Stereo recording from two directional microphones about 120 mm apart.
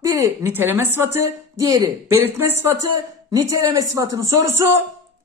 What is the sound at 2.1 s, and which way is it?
Speech, 20° right (ahead or behind).